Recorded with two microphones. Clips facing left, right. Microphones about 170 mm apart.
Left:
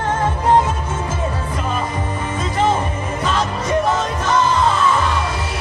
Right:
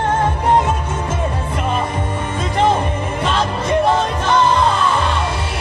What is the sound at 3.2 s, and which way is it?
Music, 30° right (ahead or behind).